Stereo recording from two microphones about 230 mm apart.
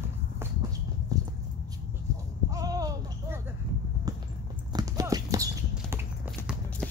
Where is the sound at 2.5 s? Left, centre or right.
Centre.